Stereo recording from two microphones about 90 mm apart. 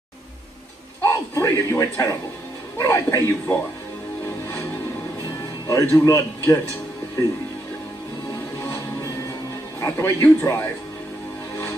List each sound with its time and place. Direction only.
1.0 s a man's voice: 35° left (ahead or behind)
5.4 s speech: 35° left (ahead or behind)
8.5 s music: 35° left (ahead or behind)
9.8 s speech: 30° left (ahead or behind)